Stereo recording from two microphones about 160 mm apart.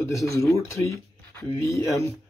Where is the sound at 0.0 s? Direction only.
20° left (ahead or behind).